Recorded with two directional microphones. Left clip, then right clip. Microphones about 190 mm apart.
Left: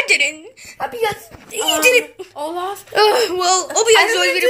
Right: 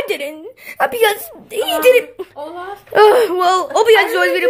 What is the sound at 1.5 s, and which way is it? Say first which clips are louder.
Speech: even; 25° right (ahead or behind).